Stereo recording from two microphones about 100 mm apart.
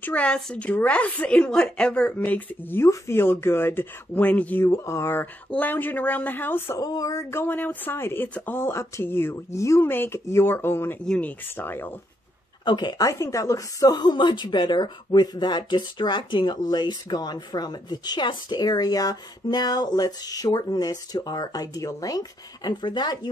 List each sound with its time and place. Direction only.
0.0 s a woman's voice: 10° left (ahead or behind)
4.6 s speech: 30° left (ahead or behind)
6.8 s speech: 40° left (ahead or behind); by 11.9 s 20° left (ahead or behind)
12.6 s speech: 45° left (ahead or behind)